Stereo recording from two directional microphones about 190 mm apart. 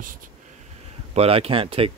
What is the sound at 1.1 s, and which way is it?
Speech, 30° right (ahead or behind).